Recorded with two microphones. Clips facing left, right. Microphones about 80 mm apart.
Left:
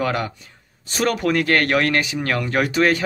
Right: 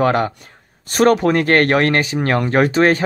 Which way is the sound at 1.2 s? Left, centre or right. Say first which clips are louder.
Right 4 dB; right.